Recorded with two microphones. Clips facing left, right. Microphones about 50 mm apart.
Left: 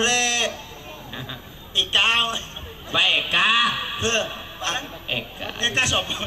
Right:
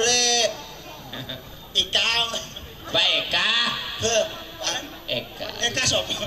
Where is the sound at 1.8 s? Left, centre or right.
Left.